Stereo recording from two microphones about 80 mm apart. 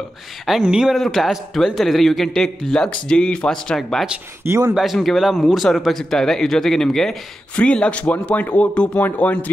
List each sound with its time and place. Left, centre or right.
0.5 s speech: centre